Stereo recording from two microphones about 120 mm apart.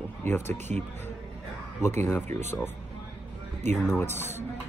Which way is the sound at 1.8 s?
20° left (ahead or behind).